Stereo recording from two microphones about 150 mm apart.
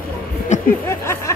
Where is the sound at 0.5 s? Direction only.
55° left (ahead or behind).